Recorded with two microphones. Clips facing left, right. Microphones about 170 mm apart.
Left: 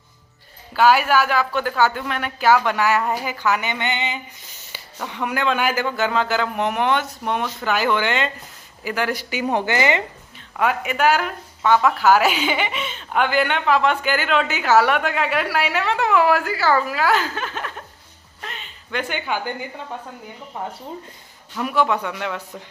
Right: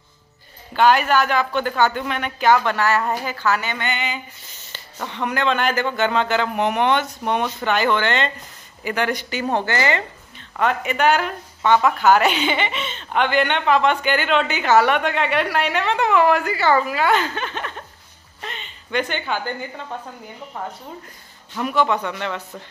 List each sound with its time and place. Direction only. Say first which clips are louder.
0.7 s a woman's voice: even; 5° left (ahead or behind)
5.0 s a woman's voice: right 1 dB; 5° left (ahead or behind)
10.6 s a woman's voice: even; 5° left (ahead or behind)
18.4 s a sound: right 2 dB; centre (ahead or behind)
20.5 s a woman's voice: left 1 dB; 15° left (ahead or behind)
21.5 s a woman's voice: even; 5° left (ahead or behind)